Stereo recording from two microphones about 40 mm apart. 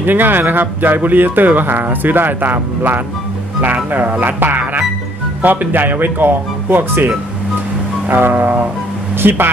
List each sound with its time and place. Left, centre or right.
0.0 s speech: right
4.2 s speech: right
8.1 s speech: right